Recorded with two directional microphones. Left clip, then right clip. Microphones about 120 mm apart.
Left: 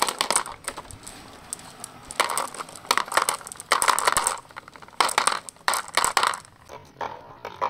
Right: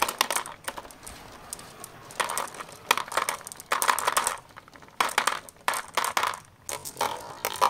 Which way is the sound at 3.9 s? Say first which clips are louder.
Left 3 dB; 25° left (ahead or behind).